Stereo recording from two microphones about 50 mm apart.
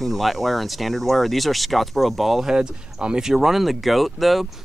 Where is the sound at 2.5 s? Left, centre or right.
Centre.